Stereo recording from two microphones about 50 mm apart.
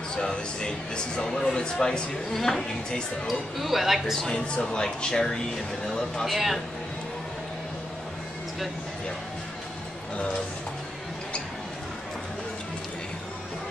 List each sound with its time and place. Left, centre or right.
0.2 s speech: centre
3.3 s speech: centre
4.0 s speech: centre
4.3 s speech: centre
6.2 s speech: centre